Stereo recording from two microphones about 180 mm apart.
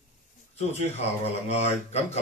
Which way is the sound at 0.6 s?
35° left (ahead or behind).